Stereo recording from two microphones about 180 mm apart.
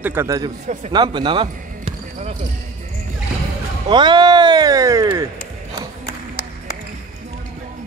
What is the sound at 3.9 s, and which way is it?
Speech, 25° right (ahead or behind).